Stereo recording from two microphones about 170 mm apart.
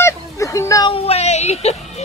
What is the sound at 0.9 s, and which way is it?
Speech, 40° left (ahead or behind).